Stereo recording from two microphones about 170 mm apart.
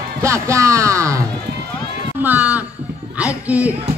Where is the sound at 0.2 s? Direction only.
15° right (ahead or behind).